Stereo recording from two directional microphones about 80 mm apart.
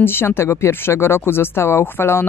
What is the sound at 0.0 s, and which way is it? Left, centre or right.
Speech, left.